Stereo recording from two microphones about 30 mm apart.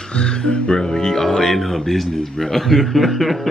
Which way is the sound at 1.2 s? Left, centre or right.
Centre.